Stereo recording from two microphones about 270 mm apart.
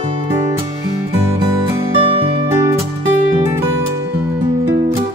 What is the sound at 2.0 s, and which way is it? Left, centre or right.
Music, centre.